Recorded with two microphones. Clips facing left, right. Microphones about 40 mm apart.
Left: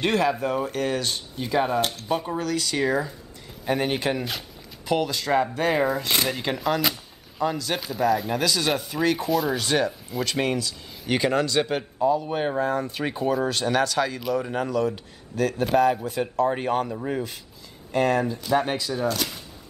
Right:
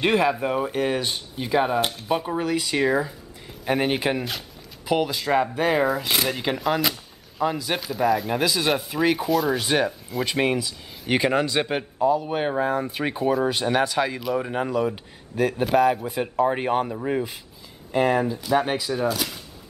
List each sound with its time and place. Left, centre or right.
0.0 s speech: centre
4.2 s a sound: centre
4.9 s speech: centre
9.6 s speech: centre
15.6 s speech: centre